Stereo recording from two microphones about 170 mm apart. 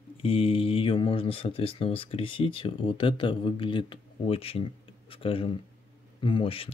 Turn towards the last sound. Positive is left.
turn(degrees=30)  # may be behind; listen again after turning